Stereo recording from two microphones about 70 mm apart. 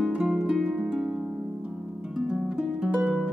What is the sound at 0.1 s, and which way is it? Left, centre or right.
Harp, centre.